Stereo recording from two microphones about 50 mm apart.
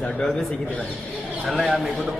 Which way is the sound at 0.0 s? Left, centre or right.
Centre.